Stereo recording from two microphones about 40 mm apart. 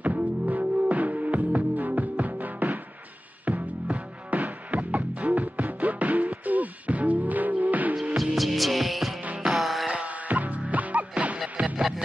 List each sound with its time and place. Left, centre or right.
0.0 s music: right
8.2 s hum: centre
9.6 s music: centre
9.8 s music: right